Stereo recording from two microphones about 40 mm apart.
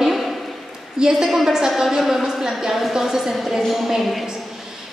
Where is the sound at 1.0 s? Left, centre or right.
Centre.